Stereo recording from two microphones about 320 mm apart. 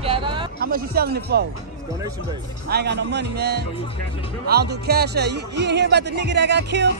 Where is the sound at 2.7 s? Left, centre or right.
Right.